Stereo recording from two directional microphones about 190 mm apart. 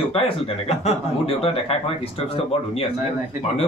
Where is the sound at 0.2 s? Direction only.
30° left (ahead or behind).